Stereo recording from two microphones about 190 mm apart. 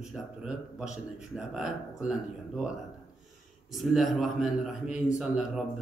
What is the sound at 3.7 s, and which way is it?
A man's voice, centre (ahead or behind).